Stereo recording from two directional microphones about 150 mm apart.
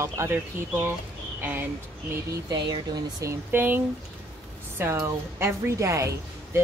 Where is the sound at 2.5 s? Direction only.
30° right (ahead or behind).